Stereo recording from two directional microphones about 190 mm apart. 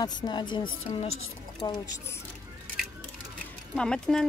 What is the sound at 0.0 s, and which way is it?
Speech, 25° left (ahead or behind).